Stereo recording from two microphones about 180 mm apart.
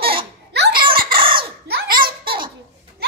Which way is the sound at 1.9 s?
55° right (ahead or behind).